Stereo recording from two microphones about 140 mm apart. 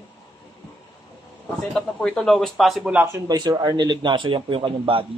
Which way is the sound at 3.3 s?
30° right (ahead or behind).